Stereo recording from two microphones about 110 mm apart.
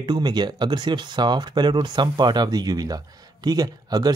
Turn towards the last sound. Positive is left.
turn(degrees=-35)  # may be behind; listen again after turning